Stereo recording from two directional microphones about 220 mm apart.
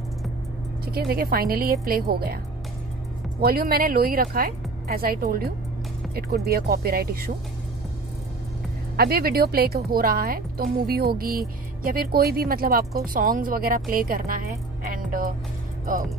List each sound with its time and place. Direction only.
0.8 s speech: 45° right (ahead or behind)
3.3 s speech: 45° right (ahead or behind)
8.9 s speech: 45° right (ahead or behind)